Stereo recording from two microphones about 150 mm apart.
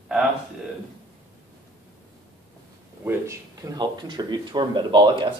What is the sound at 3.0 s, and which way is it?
Speech, 20° right (ahead or behind).